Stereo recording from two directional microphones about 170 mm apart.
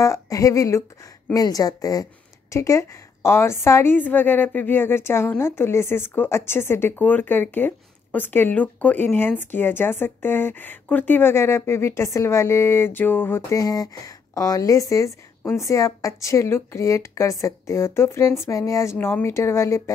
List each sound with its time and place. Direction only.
0.0 s a woman's voice: 20° left (ahead or behind)